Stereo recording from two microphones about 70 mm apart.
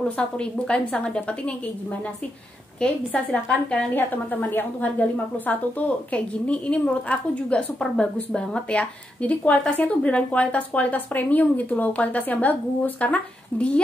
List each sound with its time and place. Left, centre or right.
0.2 s a woman's voice: centre
2.8 s a woman's voice: centre